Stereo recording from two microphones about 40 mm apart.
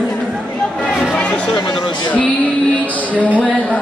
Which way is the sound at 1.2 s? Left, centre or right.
Left.